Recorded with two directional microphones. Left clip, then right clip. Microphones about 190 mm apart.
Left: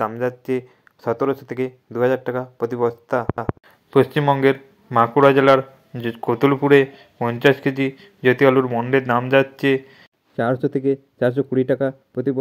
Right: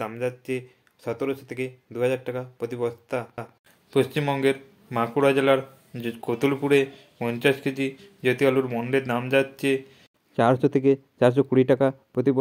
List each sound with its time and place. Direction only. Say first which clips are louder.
0.2 s a man's voice: left 6 dB; 20° left (ahead or behind)